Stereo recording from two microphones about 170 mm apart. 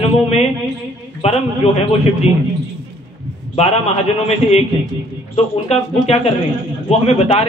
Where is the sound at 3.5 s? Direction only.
35° left (ahead or behind).